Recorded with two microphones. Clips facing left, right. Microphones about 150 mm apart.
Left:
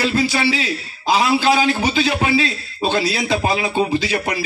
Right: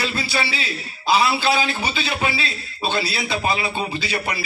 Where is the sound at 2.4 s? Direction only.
45° left (ahead or behind).